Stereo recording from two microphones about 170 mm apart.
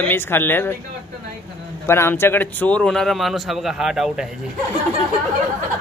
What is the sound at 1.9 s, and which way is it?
Speech, 15° left (ahead or behind).